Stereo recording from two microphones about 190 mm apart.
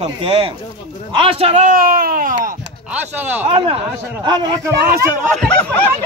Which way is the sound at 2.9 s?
10° right (ahead or behind).